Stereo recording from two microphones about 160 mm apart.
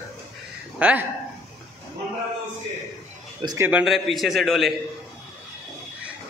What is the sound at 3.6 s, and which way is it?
A man's voice, 10° right (ahead or behind).